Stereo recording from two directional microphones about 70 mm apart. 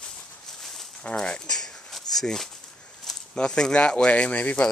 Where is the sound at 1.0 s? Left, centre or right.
Centre.